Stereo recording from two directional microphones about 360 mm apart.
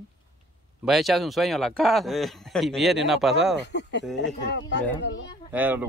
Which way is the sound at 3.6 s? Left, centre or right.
Left.